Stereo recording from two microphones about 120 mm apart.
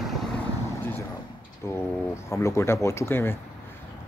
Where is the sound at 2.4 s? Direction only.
20° left (ahead or behind).